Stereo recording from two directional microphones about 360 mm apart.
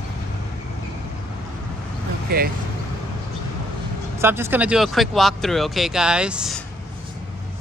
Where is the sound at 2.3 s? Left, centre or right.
Right.